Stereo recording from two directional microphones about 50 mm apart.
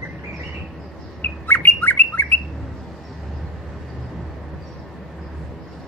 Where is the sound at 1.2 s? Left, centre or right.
Left.